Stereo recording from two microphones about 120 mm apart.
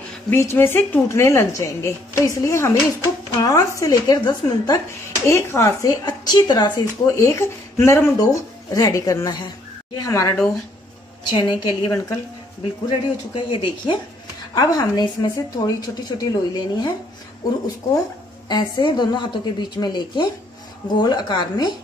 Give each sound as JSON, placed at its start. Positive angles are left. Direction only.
{"t": 0.3, "sound": "a woman's voice", "side_deg": 20}
{"t": 11.2, "sound": "a woman's voice", "side_deg": 40}
{"t": 18.5, "sound": "a woman's voice", "side_deg": 40}